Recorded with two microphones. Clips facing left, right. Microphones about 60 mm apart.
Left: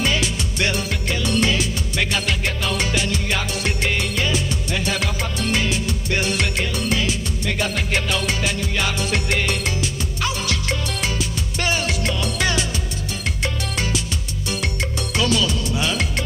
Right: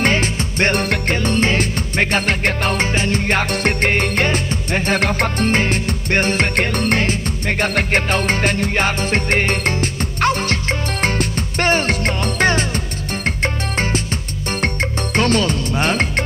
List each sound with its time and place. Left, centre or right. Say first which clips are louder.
0.0 s music: right 4 dB; right